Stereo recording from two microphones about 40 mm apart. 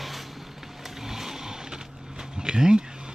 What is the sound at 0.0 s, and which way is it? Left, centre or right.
Vehicle, centre.